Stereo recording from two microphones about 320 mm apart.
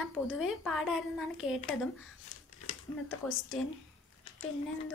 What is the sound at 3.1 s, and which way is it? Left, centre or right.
Speech, left.